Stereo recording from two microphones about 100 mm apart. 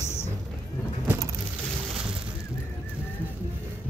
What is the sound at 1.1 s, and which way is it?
Crushing, 15° right (ahead or behind).